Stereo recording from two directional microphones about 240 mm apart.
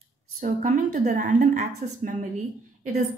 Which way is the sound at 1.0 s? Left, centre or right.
Right.